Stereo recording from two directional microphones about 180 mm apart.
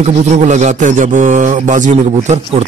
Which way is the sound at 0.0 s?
40° right (ahead or behind).